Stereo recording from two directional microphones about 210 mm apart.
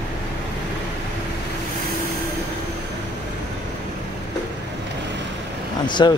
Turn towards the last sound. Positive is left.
turn(degrees=20)  # may be behind; listen again after turning